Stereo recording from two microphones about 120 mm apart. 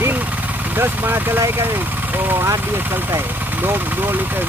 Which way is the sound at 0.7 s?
20° right (ahead or behind).